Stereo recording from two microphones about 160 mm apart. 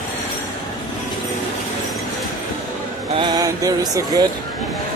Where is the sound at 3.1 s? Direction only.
25° right (ahead or behind).